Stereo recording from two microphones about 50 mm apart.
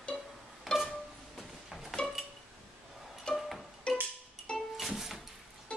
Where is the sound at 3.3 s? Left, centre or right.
Centre.